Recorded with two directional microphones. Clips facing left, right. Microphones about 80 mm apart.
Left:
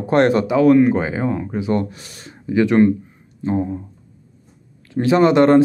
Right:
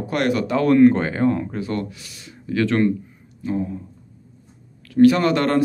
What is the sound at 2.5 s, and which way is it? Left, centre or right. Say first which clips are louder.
Speech: left 5 dB; centre.